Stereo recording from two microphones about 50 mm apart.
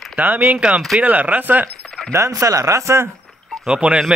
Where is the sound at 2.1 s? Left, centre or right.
Right.